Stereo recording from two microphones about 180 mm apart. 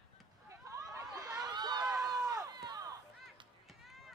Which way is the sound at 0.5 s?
15° right (ahead or behind).